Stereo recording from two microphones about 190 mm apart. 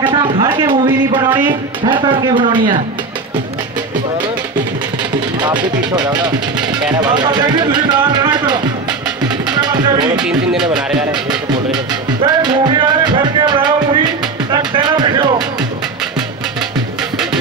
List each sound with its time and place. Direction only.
0.1 s speech: 25° right (ahead or behind)
5.4 s speech: 25° right (ahead or behind)
9.2 s music: 20° right (ahead or behind)
10.2 s speech: 5° right (ahead or behind)
11.2 s music: 20° right (ahead or behind)